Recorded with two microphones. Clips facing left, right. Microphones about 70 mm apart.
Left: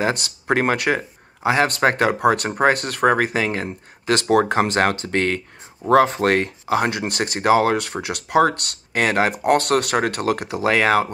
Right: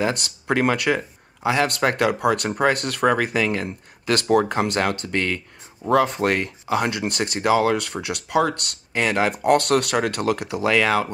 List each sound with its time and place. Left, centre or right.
0.5 s speech: left
5.8 s speech: centre
6.1 s speech: left